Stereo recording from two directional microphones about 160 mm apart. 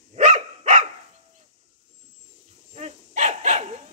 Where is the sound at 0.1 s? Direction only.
50° right (ahead or behind).